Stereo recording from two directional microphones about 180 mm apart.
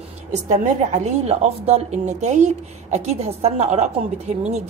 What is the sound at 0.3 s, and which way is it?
A woman's voice, 40° right (ahead or behind).